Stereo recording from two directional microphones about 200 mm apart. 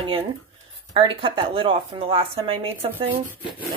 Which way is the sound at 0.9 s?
25° right (ahead or behind).